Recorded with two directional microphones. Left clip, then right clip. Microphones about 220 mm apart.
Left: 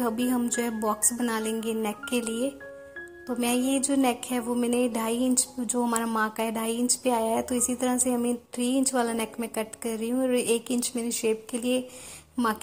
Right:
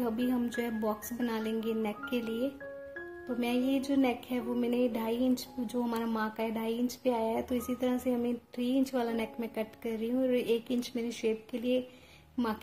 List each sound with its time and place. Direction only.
0.0 s a woman's voice: 20° left (ahead or behind)